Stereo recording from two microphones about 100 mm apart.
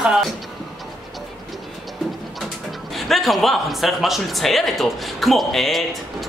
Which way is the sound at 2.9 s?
Centre (ahead or behind).